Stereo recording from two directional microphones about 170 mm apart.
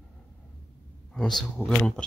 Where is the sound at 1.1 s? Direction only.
5° left (ahead or behind).